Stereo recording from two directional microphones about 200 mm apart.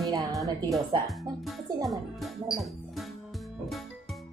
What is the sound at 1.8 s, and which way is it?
Music, centre (ahead or behind).